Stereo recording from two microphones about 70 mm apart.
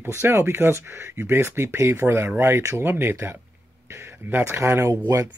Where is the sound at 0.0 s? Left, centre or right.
Right.